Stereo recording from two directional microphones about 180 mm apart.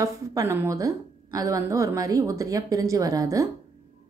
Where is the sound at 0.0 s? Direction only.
20° right (ahead or behind).